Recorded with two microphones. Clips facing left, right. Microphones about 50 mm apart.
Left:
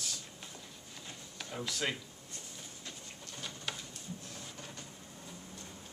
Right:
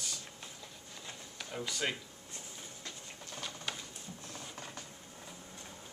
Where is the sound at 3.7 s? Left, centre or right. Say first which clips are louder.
Left 1 dB; centre.